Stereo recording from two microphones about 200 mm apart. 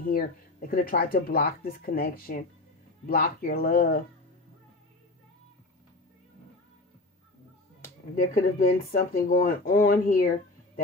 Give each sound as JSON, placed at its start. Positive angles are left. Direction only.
{"t": 0.0, "sound": "speech", "side_deg": 45}
{"t": 8.2, "sound": "speech", "side_deg": 45}